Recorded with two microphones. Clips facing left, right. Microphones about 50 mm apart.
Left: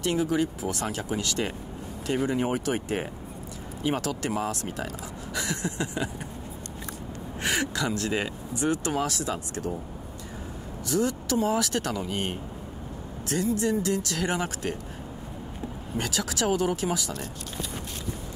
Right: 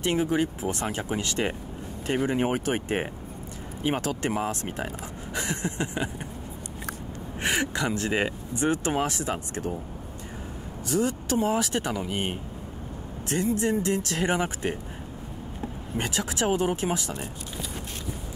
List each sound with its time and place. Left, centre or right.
0.0 s speech: right
7.4 s speech: right
10.9 s speech: right
13.3 s speech: right
16.0 s speech: right